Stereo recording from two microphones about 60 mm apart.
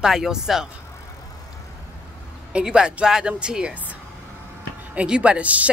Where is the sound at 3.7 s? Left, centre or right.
Right.